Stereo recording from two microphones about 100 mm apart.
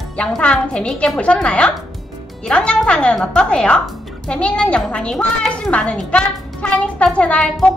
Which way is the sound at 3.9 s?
Centre (ahead or behind).